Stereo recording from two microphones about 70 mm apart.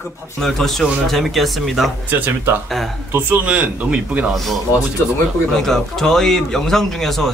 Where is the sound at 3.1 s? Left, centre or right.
Right.